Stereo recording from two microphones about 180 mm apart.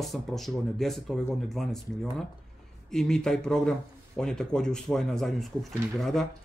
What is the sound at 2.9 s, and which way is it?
Speech, 5° left (ahead or behind).